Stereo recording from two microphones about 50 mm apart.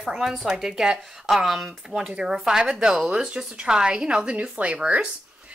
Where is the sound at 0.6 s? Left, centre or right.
Centre.